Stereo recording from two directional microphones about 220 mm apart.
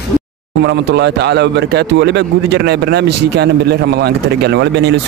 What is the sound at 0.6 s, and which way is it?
Speech, 50° right (ahead or behind).